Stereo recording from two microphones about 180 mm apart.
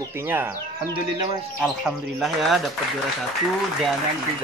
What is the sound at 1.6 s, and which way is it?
Speech, centre (ahead or behind).